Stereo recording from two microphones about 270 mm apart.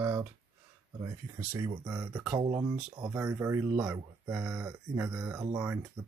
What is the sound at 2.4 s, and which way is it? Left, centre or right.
Speech, centre.